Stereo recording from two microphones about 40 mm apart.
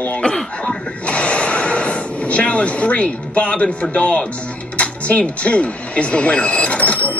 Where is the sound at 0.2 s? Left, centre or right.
Left.